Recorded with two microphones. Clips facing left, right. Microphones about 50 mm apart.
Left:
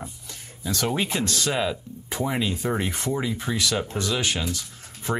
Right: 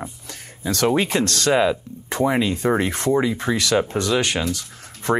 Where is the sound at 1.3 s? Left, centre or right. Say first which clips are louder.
Right 6 dB; centre.